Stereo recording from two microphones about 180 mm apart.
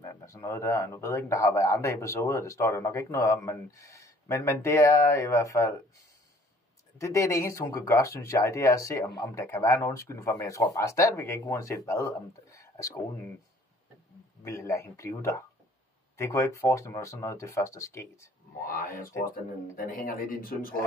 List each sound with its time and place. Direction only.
0.1 s speech: 15° left (ahead or behind)
7.0 s speech: 15° left (ahead or behind)
14.4 s speech: 15° left (ahead or behind)
18.7 s speech: 50° left (ahead or behind)